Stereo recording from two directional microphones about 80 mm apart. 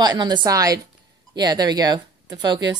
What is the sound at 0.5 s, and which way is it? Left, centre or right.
Speech, right.